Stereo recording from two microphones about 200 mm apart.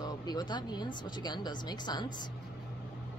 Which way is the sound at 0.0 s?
20° left (ahead or behind).